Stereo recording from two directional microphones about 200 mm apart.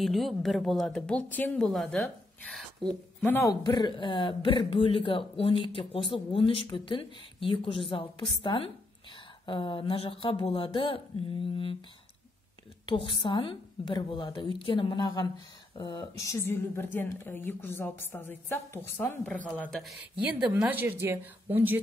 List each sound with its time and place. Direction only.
0.0 s speech: centre (ahead or behind)
3.6 s a woman's voice: 20° left (ahead or behind)
12.8 s a woman's voice: 25° left (ahead or behind); by 21.7 s 10° right (ahead or behind)